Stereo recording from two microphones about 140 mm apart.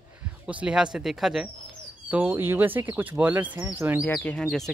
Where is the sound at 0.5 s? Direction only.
10° right (ahead or behind).